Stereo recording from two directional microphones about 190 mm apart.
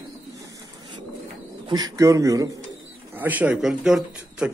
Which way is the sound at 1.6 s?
20° right (ahead or behind).